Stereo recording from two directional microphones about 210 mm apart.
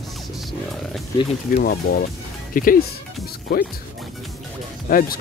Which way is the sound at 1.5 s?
45° left (ahead or behind).